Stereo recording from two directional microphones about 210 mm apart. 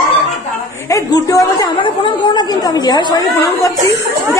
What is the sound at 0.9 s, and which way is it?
A woman's voice, 15° left (ahead or behind).